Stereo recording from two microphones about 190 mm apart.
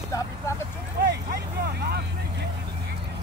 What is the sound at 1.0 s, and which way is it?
Vehicle, 55° right (ahead or behind).